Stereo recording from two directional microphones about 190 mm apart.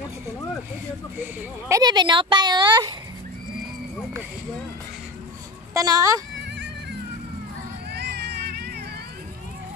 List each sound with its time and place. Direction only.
1.2 s speech: 20° right (ahead or behind)
5.7 s speech: 20° right (ahead or behind)
7.9 s a sound: 60° right (ahead or behind)